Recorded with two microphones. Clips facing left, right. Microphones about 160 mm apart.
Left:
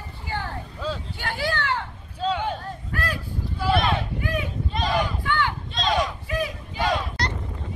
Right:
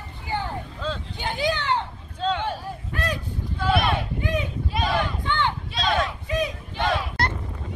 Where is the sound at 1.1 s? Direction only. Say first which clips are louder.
Right 5 dB; 20° right (ahead or behind).